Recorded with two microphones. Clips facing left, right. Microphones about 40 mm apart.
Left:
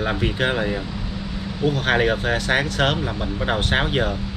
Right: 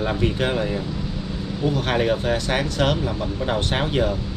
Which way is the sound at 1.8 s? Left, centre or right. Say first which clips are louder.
Left 2 dB; left.